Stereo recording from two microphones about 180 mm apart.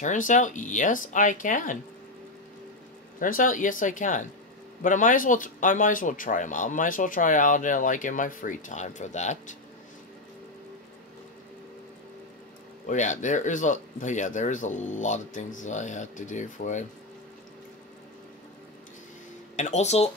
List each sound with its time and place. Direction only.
0.0 s speech: 45° left (ahead or behind)
3.2 s speech: 50° left (ahead or behind)
12.8 s speech: 45° left (ahead or behind)
19.5 s speech: 40° left (ahead or behind)